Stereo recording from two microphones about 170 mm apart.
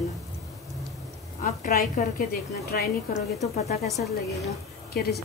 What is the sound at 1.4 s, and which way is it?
A woman's voice, 50° left (ahead or behind).